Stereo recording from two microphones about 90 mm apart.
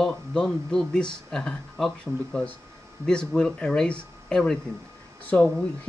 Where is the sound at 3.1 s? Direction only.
10° left (ahead or behind).